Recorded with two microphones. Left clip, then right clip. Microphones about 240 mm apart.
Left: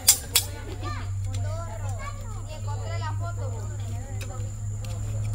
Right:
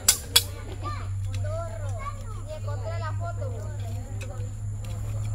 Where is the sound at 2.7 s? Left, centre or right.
Left.